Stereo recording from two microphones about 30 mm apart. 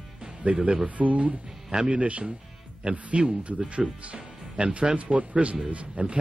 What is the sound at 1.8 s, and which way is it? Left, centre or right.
Speech, right.